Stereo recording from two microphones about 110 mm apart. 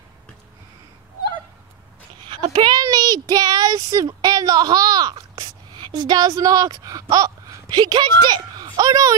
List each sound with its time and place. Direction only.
2.4 s a sound: 45° right (ahead or behind)
5.8 s speech: 45° right (ahead or behind)
7.8 s speech: 40° right (ahead or behind)